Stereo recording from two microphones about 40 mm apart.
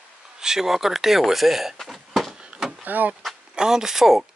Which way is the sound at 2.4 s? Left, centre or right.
Right.